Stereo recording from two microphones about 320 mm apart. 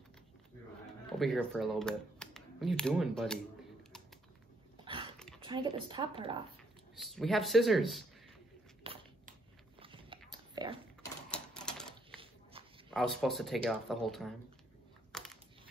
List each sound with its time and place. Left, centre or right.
1.0 s speech: centre
5.4 s a sound: centre
5.9 s speech: centre
7.0 s speech: centre
8.8 s a sound: centre
11.2 s typewriter: centre
12.9 s speech: centre
15.1 s crushing: centre